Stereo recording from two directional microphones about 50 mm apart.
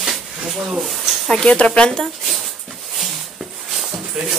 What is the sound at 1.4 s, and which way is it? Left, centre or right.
Speech, centre.